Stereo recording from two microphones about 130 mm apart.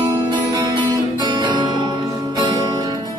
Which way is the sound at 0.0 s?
25° right (ahead or behind).